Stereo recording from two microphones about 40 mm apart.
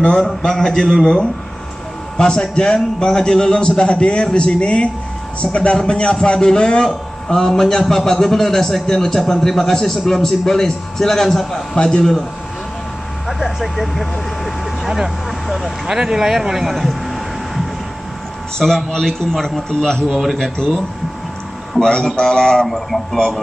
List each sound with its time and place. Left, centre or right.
0.4 s a man's voice: centre
2.1 s a man's voice: centre
11.7 s a man's voice: left
13.3 s speech: centre
15.4 s vehicle: centre
15.9 s speech: centre
16.7 s air conditioning: centre
18.9 s a man's voice: centre
20.1 s speech: centre
20.5 s a man's voice: centre
22.7 s a man's voice: centre